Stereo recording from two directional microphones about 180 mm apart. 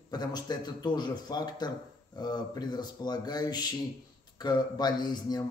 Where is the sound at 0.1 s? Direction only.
25° left (ahead or behind).